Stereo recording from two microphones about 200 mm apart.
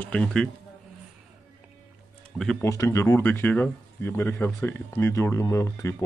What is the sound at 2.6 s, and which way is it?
Speech, 15° left (ahead or behind).